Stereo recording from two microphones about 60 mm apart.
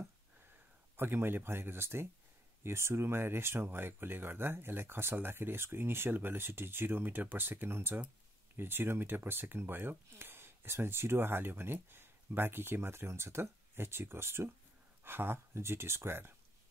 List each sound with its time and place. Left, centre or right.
0.9 s speech: right